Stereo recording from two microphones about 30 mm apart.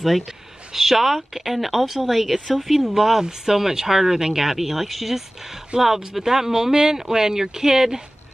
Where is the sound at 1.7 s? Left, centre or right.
Centre.